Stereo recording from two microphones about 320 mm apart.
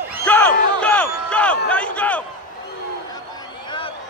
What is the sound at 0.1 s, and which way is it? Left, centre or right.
Crowd, centre.